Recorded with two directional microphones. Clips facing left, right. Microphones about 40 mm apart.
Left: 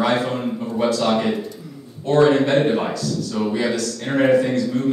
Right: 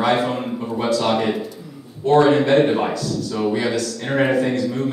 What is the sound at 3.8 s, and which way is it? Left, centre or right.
Speech, centre.